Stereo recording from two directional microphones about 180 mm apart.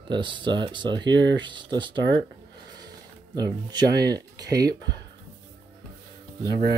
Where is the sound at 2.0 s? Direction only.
80° right.